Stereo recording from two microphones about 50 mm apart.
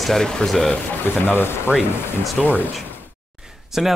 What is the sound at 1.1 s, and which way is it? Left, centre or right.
Speech, left.